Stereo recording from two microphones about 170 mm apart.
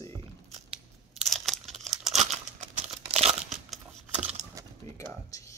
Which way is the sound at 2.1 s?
40° right (ahead or behind).